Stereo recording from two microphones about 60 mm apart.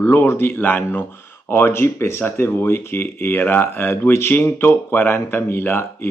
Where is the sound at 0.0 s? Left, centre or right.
Left.